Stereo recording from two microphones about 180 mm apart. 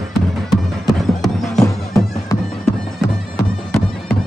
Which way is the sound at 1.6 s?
20° left (ahead or behind).